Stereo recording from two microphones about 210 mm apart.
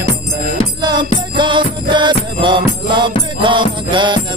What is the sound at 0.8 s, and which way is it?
Music, 20° right (ahead or behind).